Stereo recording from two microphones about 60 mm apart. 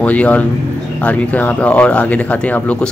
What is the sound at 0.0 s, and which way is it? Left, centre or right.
A man's voice, left.